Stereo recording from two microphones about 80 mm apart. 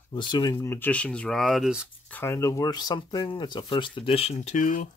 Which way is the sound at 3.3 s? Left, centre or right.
Left.